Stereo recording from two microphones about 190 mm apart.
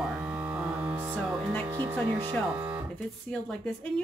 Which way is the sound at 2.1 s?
25° right (ahead or behind).